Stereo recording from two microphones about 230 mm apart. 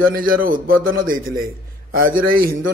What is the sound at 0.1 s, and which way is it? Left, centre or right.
A man's voice, right.